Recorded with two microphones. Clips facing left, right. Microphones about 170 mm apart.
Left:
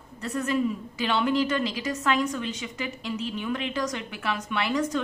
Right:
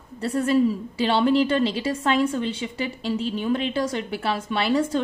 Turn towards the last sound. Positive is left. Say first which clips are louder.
# right 4 dB
turn(degrees=-30)  # may be behind; listen again after turning